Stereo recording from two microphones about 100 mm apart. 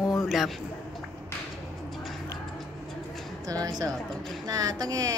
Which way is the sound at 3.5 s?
40° right (ahead or behind).